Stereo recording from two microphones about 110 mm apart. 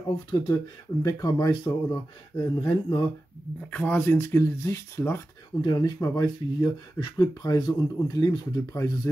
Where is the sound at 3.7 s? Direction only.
15° left (ahead or behind).